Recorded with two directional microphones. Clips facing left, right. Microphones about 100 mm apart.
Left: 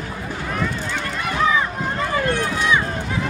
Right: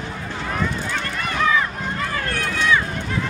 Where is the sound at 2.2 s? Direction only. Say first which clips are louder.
Right 2 dB; 20° left (ahead or behind).